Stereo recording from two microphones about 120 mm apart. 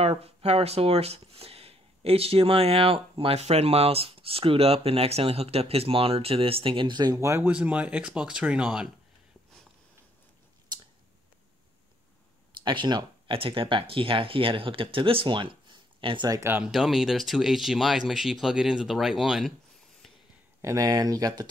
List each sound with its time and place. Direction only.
0.0 s speech: 55° right (ahead or behind); by 7.2 s 40° right (ahead or behind)
7.2 s speech: 20° right (ahead or behind)
7.5 s speech: 10° right (ahead or behind)
10.7 s scissors: 35° right (ahead or behind)
12.6 s speech: 40° right (ahead or behind)
16.3 s speech: 25° right (ahead or behind)
16.5 s speech: 5° right (ahead or behind)
20.6 s speech: 30° right (ahead or behind)